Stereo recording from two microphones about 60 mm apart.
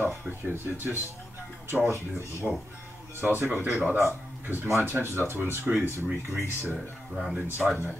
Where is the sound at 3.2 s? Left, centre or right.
Right.